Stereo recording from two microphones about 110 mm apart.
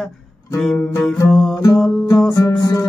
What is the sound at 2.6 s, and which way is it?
Music, 30° left (ahead or behind).